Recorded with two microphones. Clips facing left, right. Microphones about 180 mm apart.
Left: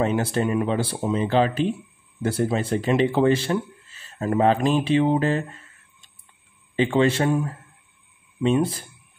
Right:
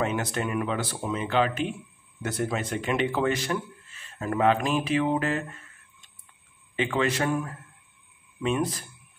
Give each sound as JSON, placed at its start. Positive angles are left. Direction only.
{"t": 0.0, "sound": "speech", "side_deg": 30}